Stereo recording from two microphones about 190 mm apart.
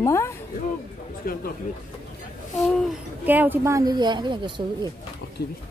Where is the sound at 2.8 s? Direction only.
10° right (ahead or behind); by 4.9 s 25° right (ahead or behind).